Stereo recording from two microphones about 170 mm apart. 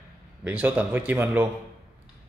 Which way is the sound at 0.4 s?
10° right (ahead or behind).